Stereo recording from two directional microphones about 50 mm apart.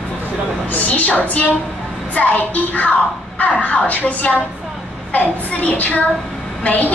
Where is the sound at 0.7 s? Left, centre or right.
Left.